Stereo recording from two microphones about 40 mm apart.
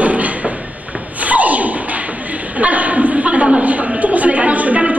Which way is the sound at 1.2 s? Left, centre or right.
Right.